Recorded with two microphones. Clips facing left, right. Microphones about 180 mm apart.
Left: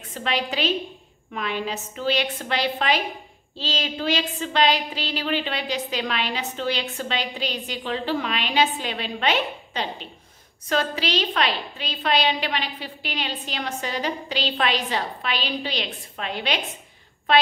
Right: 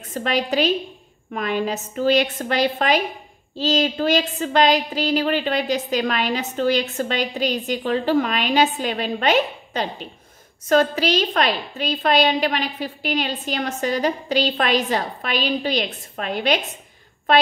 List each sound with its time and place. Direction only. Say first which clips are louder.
0.1 s a woman's voice: right 5 dB; 45° right (ahead or behind)